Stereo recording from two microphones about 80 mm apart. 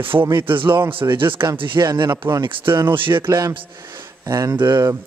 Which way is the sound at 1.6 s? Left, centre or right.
Right.